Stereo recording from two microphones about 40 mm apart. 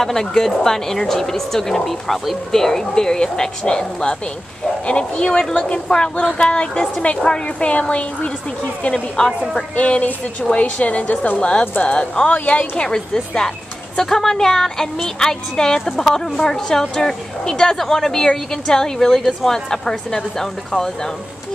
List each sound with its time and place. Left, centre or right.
0.0 s a woman's voice: centre; by 9.2 s left
9.2 s a woman's voice: centre
9.8 s a woman's voice: left
12.8 s a woman's voice: centre